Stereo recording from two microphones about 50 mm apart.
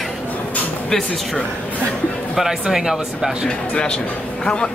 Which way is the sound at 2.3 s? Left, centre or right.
Centre.